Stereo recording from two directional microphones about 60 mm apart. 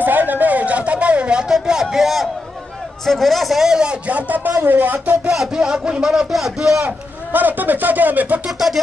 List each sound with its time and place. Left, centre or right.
0.0 s a sound: right
1.5 s speech: centre
4.6 s speech: right
5.3 s speech: centre
7.3 s speech: right
8.5 s speech: centre